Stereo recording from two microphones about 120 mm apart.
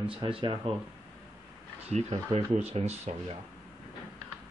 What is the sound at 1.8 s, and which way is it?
Speech, 65° right (ahead or behind).